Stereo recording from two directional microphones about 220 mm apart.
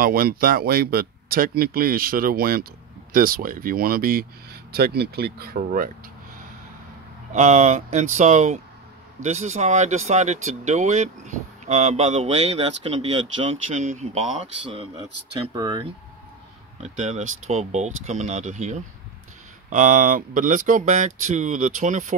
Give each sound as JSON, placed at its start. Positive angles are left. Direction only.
{"t": 0.0, "sound": "speech", "side_deg": -40}
{"t": 7.3, "sound": "speech", "side_deg": -30}
{"t": 16.8, "sound": "speech", "side_deg": -30}